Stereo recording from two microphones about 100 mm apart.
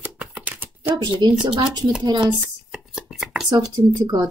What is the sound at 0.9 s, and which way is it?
Speech, 45° right (ahead or behind).